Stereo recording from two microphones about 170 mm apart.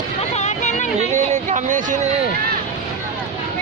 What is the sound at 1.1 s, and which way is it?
Speech, 45° right (ahead or behind).